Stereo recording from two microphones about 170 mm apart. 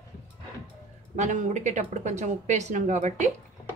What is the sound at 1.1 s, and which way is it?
Speech, 45° right (ahead or behind).